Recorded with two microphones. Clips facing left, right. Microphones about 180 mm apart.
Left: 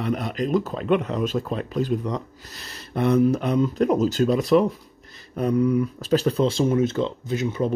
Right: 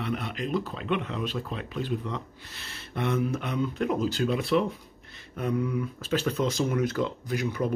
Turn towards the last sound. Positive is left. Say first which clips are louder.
# left 4 dB
turn(degrees=25)  # may be behind; listen again after turning